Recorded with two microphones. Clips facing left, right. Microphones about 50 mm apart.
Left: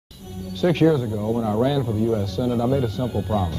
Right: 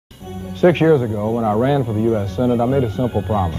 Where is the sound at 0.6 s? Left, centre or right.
Right.